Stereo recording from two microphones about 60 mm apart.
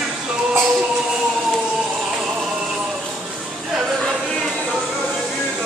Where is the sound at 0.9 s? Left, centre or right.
Centre.